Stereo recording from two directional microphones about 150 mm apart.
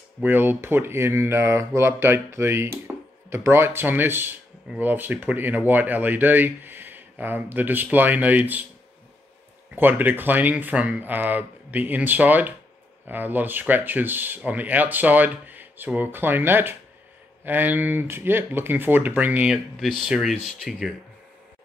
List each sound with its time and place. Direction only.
0.2 s speech: 15° right (ahead or behind)
9.8 s speech: 15° right (ahead or behind)